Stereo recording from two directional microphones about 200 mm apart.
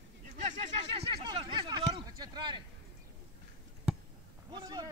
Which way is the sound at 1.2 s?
25° right (ahead or behind).